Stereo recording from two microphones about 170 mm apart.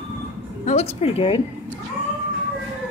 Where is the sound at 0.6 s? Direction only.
40° left (ahead or behind).